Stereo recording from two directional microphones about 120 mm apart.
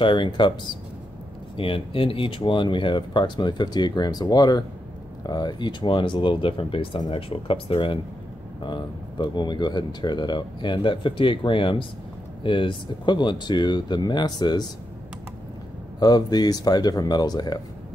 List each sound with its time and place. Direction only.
0.0 s speech: 40° left (ahead or behind)
16.0 s speech: 35° left (ahead or behind)